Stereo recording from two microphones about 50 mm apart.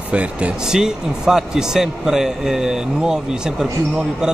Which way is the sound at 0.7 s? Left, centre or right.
Centre.